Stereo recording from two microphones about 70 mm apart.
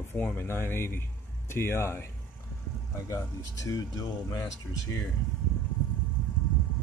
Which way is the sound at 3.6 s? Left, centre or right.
Left.